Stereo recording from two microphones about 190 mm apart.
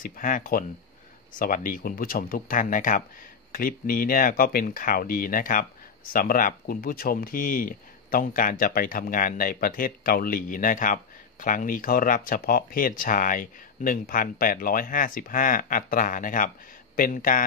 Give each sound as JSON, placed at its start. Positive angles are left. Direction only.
{"t": 0.0, "sound": "a man's voice", "side_deg": 45}